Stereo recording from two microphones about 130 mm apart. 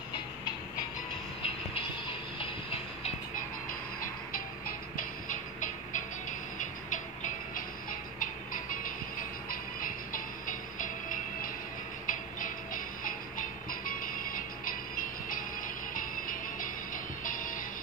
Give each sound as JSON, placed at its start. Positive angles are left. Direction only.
{"t": 2.3, "sound": "train", "side_deg": 45}
{"t": 4.9, "sound": "music", "side_deg": 80}
{"t": 9.5, "sound": "music", "side_deg": 90}
{"t": 15.9, "sound": "music", "side_deg": 90}